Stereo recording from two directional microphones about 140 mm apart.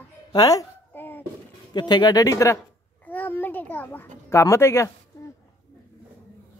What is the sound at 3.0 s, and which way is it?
A child's voice, 10° left (ahead or behind).